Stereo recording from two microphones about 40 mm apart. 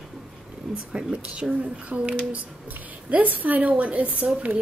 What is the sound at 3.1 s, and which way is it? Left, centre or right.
A woman's voice, right.